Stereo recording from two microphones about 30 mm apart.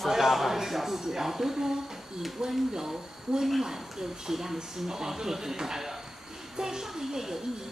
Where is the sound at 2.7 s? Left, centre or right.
Right.